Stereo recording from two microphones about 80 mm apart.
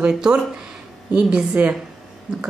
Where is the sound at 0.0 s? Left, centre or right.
Centre.